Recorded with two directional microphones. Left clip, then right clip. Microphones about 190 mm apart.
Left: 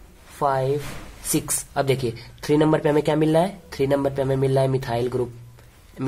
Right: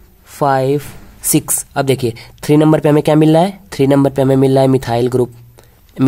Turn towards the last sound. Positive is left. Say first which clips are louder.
# right 15 dB
turn(degrees=-50)  # may be behind; listen again after turning